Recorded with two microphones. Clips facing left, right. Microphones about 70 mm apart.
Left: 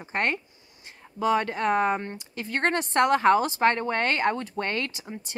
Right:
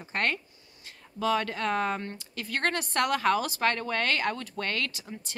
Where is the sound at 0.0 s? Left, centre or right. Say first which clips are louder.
Left 2 dB; left.